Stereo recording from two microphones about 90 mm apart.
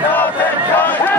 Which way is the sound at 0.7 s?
20° left (ahead or behind).